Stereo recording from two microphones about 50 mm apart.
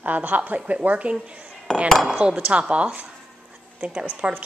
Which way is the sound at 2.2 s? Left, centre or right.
Right.